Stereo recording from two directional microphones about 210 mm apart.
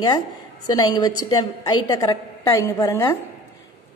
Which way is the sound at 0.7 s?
20° left (ahead or behind).